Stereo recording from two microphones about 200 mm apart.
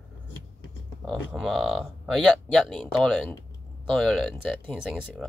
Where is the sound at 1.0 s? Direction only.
Centre (ahead or behind).